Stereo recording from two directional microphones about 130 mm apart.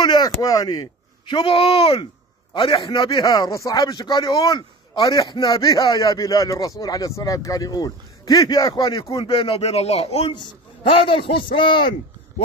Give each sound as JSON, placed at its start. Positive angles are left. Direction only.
{"t": 0.0, "sound": "a man's voice", "side_deg": 35}
{"t": 9.1, "sound": "speech", "side_deg": 40}
{"t": 10.3, "sound": "a man's voice", "side_deg": 40}